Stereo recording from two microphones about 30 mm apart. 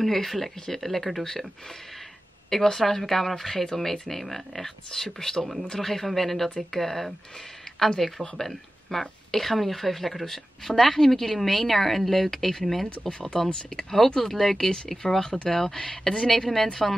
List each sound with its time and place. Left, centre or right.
0.0 s a woman's voice: centre
2.5 s a woman's voice: centre
16.2 s speech: centre